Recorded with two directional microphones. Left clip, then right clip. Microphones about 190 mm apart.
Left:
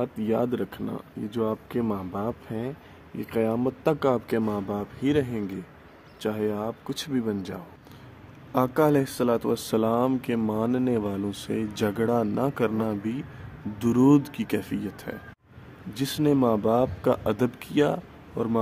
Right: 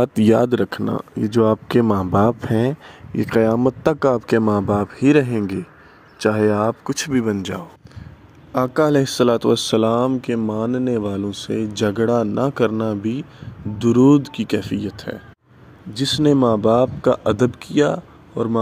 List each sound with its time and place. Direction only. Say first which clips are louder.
0.0 s speech: right 11 dB; 55° right (ahead or behind); by 7.6 s 25° right (ahead or behind)
8.5 s speech: right 5 dB; 15° right (ahead or behind)